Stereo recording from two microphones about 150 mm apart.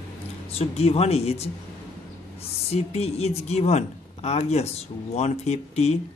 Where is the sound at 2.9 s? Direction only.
45° left (ahead or behind).